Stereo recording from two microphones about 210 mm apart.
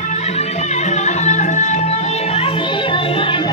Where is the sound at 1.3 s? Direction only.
35° left (ahead or behind).